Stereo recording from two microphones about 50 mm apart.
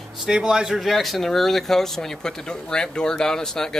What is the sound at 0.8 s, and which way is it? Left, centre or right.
Speech, centre.